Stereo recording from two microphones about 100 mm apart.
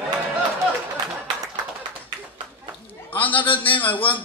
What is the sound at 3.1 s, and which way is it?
A man's voice, 15° left (ahead or behind).